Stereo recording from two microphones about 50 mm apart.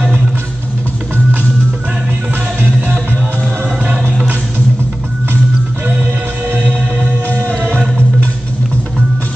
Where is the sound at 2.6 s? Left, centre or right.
Right.